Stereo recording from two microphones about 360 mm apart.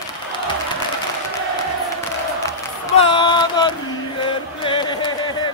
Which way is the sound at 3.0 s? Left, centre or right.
Centre.